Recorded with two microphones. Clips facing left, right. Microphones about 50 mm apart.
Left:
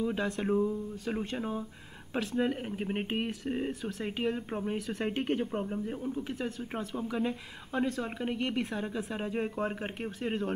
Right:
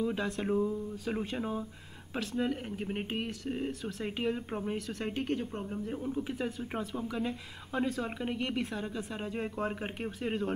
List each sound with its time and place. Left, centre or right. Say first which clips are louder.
0.0 s speech: left 1 dB; centre
5.1 s speech: left 2 dB; left
5.9 s speech: even; centre